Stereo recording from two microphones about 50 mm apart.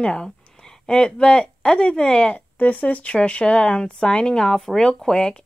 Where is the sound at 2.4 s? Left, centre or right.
Left; by 5.4 s centre.